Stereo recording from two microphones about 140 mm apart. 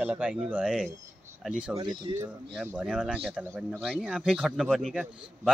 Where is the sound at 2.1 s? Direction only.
35° right (ahead or behind).